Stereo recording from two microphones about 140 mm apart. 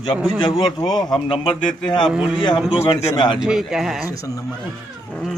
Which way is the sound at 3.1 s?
35° left (ahead or behind).